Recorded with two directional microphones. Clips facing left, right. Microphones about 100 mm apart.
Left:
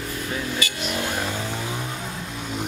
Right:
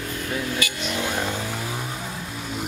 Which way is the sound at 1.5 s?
5° right (ahead or behind).